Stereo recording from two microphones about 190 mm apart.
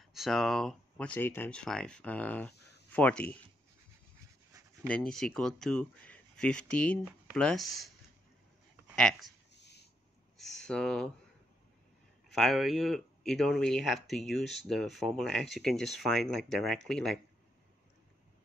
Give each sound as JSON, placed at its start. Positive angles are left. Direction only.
{"t": 0.0, "sound": "speech", "side_deg": 0}
{"t": 2.5, "sound": "a sound", "side_deg": 60}
{"t": 2.9, "sound": "speech", "side_deg": 5}
{"t": 4.8, "sound": "speech", "side_deg": 5}
{"t": 8.9, "sound": "speech", "side_deg": 5}
{"t": 9.5, "sound": "a sound", "side_deg": 65}
{"t": 10.3, "sound": "a sound", "side_deg": 0}
{"t": 10.7, "sound": "speech", "side_deg": 5}
{"t": 12.3, "sound": "speech", "side_deg": 0}